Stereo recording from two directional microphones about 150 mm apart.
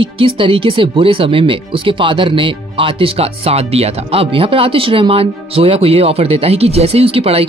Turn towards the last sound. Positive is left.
turn(degrees=-40)  # may be behind; listen again after turning